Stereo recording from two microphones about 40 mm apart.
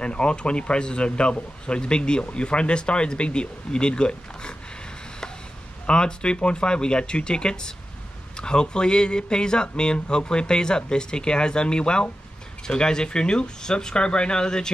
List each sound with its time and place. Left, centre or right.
0.0 s a man's voice: left
5.9 s a man's voice: left